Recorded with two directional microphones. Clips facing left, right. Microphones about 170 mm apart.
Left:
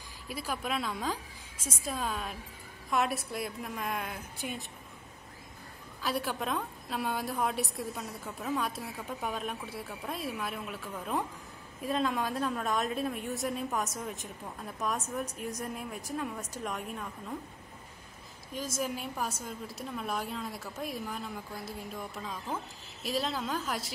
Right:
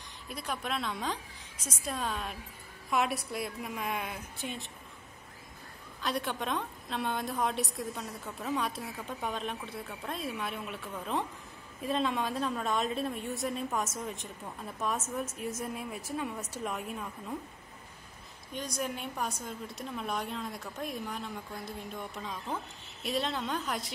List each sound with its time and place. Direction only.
0.3 s a woman's voice: 5° left (ahead or behind)
6.0 s a woman's voice: 5° left (ahead or behind)
18.5 s a woman's voice: centre (ahead or behind)